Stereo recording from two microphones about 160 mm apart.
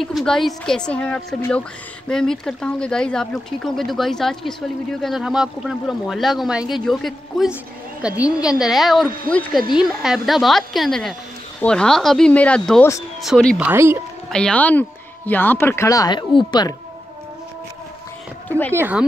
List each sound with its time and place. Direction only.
0.0 s speech: centre (ahead or behind)
13.6 s speech: 15° right (ahead or behind)
14.3 s speech: 5° left (ahead or behind); by 16.7 s 25° left (ahead or behind)
18.7 s speech: 10° right (ahead or behind)